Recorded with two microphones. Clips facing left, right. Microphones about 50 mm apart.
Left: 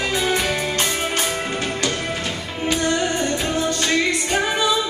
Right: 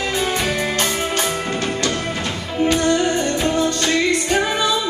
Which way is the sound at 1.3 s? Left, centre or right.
Centre.